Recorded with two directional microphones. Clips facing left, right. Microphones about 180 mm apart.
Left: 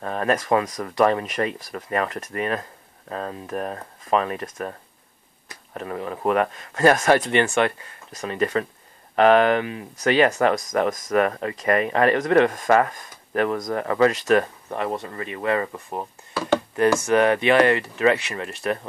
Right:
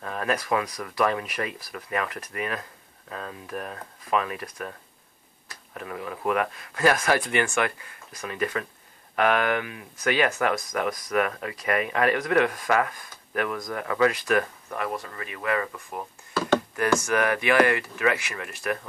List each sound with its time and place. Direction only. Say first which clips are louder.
0.0 s speech: left 5 dB; 35° left (ahead or behind)
5.8 s speech: left 5 dB; 35° left (ahead or behind)
9.9 s speech: left 5 dB; 40° left (ahead or behind)
14.7 s speech: left 4 dB; 25° left (ahead or behind)